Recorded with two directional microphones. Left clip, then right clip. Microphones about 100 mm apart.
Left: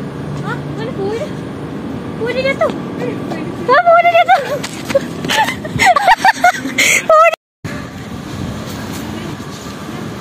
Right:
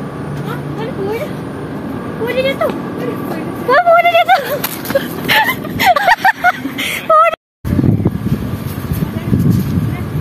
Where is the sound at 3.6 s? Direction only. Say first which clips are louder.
Even; 30° right (ahead or behind).